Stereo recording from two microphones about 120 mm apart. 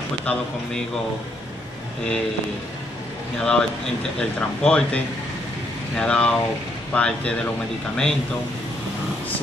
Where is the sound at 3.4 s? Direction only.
5° left (ahead or behind).